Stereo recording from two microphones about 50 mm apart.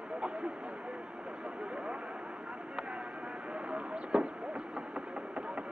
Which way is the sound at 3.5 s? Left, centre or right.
Right.